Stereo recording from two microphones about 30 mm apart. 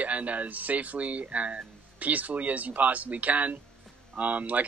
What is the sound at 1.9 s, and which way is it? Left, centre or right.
Speech, right.